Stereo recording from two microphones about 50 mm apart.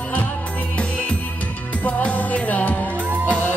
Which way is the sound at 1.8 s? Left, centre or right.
Left.